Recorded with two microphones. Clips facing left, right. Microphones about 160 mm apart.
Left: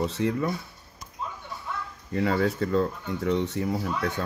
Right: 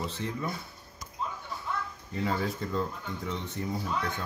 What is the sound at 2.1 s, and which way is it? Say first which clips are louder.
Speech: left 7 dB; 75° left (ahead or behind).